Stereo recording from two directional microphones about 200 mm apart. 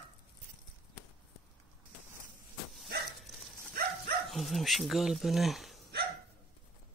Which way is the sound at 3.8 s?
50° right (ahead or behind).